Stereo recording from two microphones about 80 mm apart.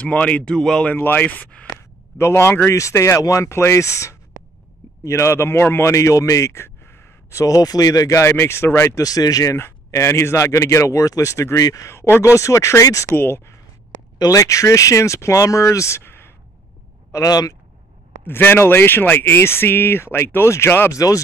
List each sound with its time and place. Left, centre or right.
0.0 s speech: centre
0.9 s speech: left
2.1 s speech: left
9.0 s speech: left
13.1 s speech: left
14.1 s speech: left
17.1 s speech: left
18.2 s speech: left
20.9 s speech: left